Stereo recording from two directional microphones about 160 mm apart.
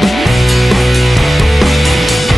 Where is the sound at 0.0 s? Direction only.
Centre (ahead or behind).